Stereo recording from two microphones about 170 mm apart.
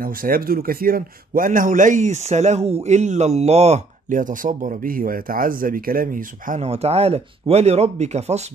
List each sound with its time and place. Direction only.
0.0 s speech: 60° right (ahead or behind); by 8.5 s 40° right (ahead or behind)